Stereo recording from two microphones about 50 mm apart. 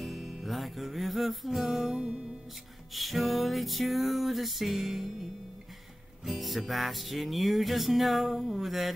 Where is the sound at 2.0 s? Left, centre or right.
Centre.